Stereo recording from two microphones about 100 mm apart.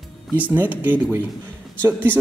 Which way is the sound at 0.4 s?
15° right (ahead or behind).